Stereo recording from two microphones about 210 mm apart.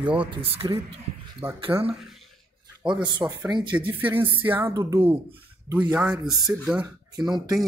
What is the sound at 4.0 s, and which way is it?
Music, 10° right (ahead or behind).